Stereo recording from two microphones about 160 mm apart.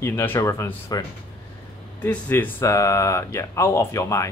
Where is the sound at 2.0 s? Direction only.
10° left (ahead or behind).